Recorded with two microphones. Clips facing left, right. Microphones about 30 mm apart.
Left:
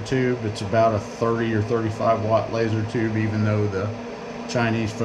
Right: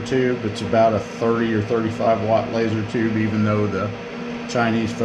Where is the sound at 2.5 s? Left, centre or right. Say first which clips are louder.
Right 2 dB; right.